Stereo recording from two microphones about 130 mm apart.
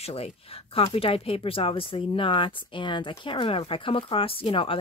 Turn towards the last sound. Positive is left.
turn(degrees=45)  # may be behind; listen again after turning